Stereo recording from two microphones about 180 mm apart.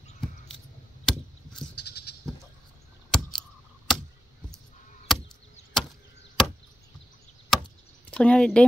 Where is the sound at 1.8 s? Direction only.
70° left (ahead or behind).